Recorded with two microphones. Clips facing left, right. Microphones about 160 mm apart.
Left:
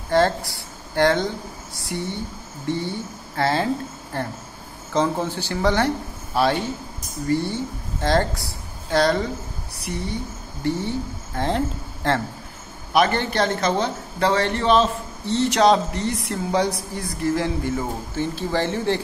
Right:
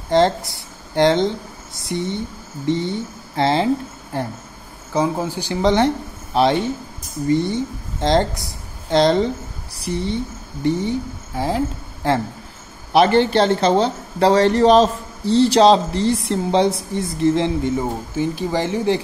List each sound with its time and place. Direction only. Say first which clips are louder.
0.1 s speech: right 3 dB; 20° right (ahead or behind)
10.6 s speech: right 4 dB; 15° right (ahead or behind)
12.9 s speech: right 6 dB; 30° right (ahead or behind)